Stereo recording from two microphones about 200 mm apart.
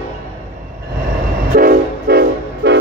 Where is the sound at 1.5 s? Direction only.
45° right (ahead or behind).